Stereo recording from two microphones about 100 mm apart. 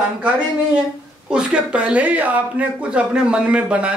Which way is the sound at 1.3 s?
10° right (ahead or behind).